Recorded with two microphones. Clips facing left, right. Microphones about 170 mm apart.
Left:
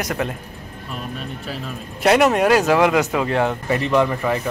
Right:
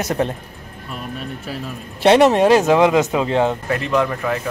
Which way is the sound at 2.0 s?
30° right (ahead or behind).